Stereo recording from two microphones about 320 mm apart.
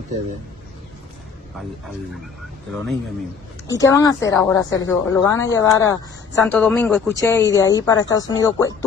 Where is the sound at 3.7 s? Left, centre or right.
Centre.